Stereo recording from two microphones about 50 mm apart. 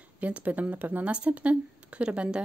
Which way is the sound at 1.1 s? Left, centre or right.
Right.